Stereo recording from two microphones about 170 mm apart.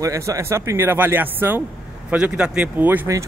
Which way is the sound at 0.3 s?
15° right (ahead or behind).